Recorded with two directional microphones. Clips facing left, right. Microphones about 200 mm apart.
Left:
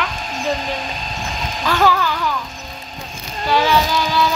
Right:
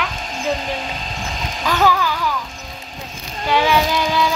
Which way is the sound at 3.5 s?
15° right (ahead or behind).